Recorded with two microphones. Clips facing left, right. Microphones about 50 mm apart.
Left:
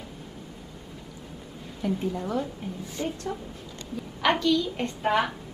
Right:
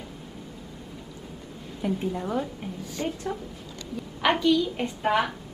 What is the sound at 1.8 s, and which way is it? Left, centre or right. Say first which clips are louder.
Speech: even; centre.